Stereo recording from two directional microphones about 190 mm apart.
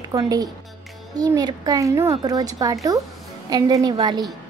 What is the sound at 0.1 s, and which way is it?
A woman's voice, 20° right (ahead or behind).